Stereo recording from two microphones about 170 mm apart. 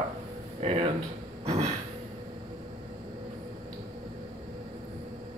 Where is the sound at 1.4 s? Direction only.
40° right (ahead or behind).